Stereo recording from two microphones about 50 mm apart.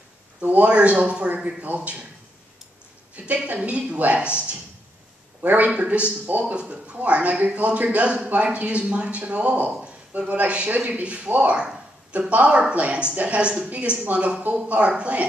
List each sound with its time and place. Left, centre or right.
0.4 s a man's voice: right
0.7 s a man's voice: right
1.3 s speech: right
3.4 s a man's voice: right
5.4 s a man's voice: right